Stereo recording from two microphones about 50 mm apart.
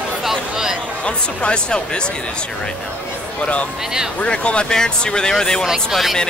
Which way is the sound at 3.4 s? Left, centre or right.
Left.